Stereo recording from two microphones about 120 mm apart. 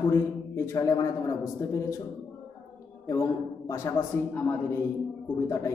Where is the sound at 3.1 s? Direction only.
25° left (ahead or behind).